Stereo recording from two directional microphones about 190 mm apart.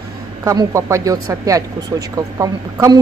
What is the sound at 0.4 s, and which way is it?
Speech, 15° right (ahead or behind).